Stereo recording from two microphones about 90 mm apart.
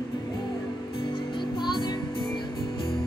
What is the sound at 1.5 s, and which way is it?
Music, 60° left (ahead or behind).